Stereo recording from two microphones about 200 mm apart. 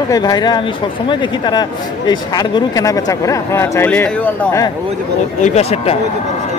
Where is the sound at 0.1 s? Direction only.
20° left (ahead or behind).